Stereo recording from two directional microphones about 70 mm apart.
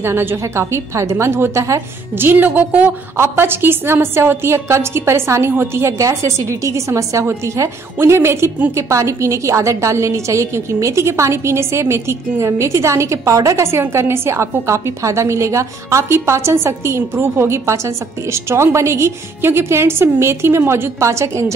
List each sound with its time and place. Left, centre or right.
0.0 s a woman's voice: right
2.1 s a woman's voice: right